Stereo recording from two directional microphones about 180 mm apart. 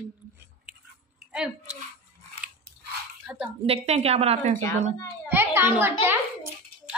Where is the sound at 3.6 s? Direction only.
35° right (ahead or behind).